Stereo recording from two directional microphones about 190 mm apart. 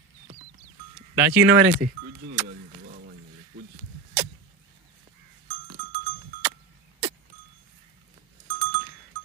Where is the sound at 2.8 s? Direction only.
70° right (ahead or behind).